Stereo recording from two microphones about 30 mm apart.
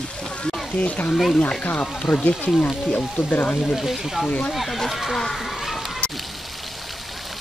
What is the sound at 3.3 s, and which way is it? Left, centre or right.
Speech, left.